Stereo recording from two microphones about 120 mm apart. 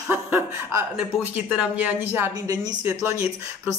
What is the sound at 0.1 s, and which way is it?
A woman's voice, 20° right (ahead or behind).